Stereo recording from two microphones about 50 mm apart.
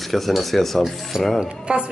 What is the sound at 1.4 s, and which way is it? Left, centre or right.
Speech, centre.